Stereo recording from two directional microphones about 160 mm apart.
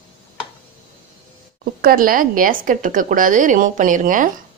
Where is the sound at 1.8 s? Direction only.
65° right (ahead or behind).